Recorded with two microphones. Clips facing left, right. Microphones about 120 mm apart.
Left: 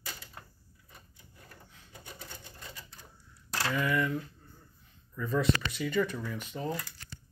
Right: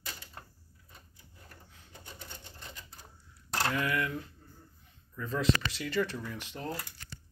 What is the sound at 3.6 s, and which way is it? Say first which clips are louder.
Speech: left 3 dB; centre (ahead or behind).